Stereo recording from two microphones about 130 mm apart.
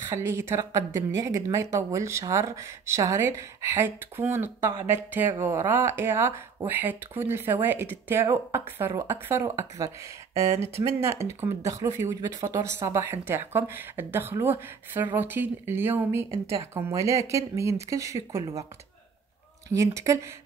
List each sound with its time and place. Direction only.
0.1 s speech: 20° right (ahead or behind)
19.7 s speech: 25° right (ahead or behind)